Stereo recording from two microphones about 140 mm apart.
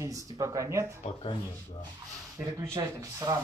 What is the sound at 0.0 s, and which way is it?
Speech, 25° right (ahead or behind).